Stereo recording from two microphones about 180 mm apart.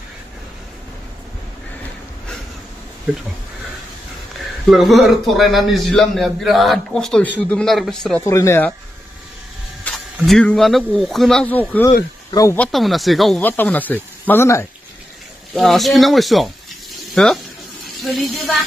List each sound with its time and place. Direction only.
4.6 s a man's voice: centre (ahead or behind)
8.3 s speech: 15° left (ahead or behind)
9.8 s speech: centre (ahead or behind); by 12.5 s 20° left (ahead or behind)
12.5 s speech: 5° left (ahead or behind)
15.5 s a man's voice: centre (ahead or behind)